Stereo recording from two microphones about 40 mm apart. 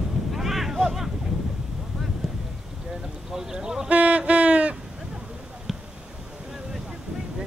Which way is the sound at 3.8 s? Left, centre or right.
Right.